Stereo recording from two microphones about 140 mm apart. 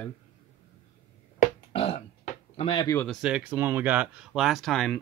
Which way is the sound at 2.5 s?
40° left (ahead or behind).